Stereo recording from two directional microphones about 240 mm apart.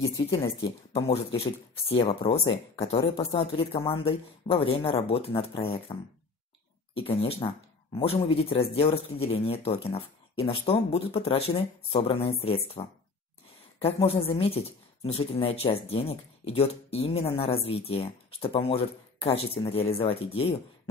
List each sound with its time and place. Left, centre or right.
0.9 s speech: left